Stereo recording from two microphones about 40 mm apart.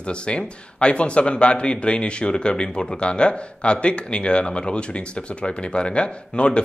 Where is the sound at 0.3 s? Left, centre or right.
Left.